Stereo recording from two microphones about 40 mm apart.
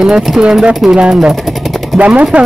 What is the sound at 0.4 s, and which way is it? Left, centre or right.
Speech, right.